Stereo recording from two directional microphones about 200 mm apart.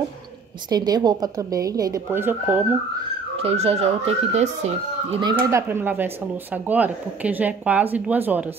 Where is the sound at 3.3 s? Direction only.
30° right (ahead or behind).